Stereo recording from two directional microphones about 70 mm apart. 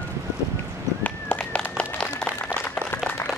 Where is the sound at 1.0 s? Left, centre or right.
Centre.